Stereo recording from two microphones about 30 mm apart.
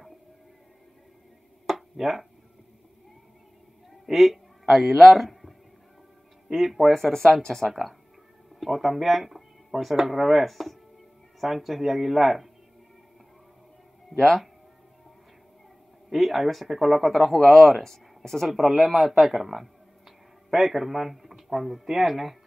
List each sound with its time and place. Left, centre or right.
1.7 s a sound: centre
4.0 s a sound: centre
4.9 s speech: centre
6.5 s a man's voice: centre
7.1 s speech: centre
8.5 s a man's voice: centre
14.1 s speech: centre
16.1 s a man's voice: centre
18.5 s a man's voice: centre
19.3 s a sound: centre
21.8 s speech: centre